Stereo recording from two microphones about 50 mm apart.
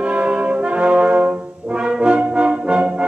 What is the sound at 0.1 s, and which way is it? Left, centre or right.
Brass instrument, right.